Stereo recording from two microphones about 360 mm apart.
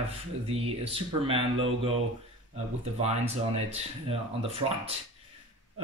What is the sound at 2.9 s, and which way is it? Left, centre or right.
Speech, centre.